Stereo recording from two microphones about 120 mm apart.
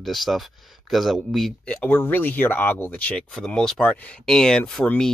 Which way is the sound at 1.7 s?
15° left (ahead or behind).